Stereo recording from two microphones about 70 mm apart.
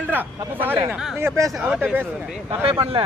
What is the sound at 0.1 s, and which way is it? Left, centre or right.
Speech, right.